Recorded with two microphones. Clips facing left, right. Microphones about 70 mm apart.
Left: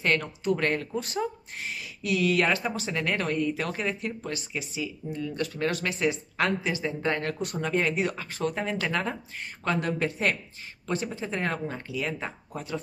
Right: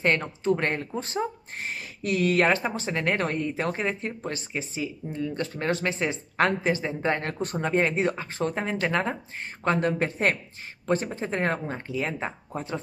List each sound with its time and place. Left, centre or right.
0.0 s speech: right